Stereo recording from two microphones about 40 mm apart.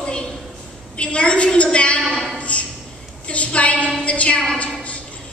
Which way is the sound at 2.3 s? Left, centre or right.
Left.